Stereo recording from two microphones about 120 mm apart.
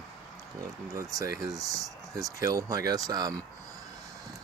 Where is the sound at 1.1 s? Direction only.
30° right (ahead or behind).